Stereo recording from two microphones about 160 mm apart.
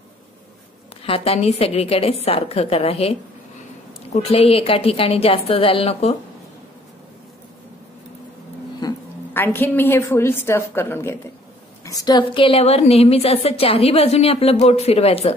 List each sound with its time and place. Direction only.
1.0 s a woman's voice: 35° left (ahead or behind)
9.3 s a woman's voice: 15° left (ahead or behind); by 15.3 s 40° left (ahead or behind)